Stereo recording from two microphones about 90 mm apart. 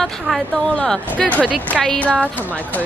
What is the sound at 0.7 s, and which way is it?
A woman's voice, 10° left (ahead or behind).